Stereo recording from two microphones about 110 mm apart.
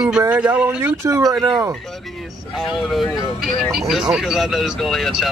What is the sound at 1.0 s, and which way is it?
Speech, 30° right (ahead or behind).